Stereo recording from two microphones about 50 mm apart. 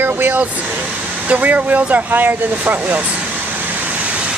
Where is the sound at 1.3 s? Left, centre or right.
Right.